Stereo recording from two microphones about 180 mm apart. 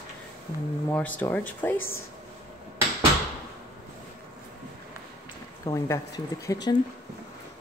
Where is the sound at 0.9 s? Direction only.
10° left (ahead or behind).